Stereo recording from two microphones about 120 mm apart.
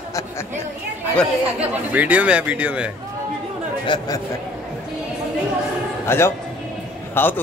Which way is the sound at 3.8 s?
40° left (ahead or behind).